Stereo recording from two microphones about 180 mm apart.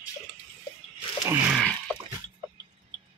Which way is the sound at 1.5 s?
5° left (ahead or behind).